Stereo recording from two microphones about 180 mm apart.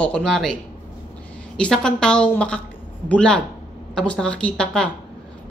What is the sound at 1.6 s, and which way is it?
A woman's voice, 5° left (ahead or behind).